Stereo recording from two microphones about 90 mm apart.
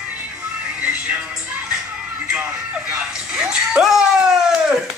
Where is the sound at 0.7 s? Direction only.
15° right (ahead or behind).